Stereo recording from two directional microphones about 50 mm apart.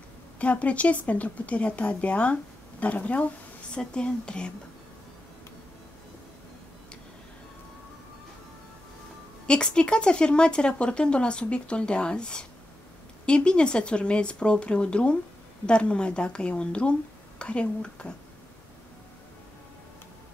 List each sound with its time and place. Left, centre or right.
0.4 s a woman's voice: left
9.5 s a woman's voice: centre